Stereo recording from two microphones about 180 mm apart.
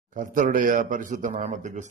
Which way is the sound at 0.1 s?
45° right (ahead or behind).